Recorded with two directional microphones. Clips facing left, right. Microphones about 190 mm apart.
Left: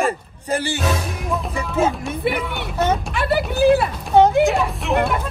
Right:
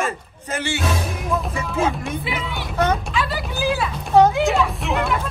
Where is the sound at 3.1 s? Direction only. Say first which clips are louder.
Left 4 dB; 60° left (ahead or behind).